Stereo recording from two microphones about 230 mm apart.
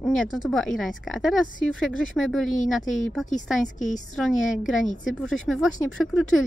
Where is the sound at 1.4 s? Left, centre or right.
Left.